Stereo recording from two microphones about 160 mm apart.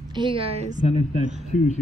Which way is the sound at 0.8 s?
40° left (ahead or behind).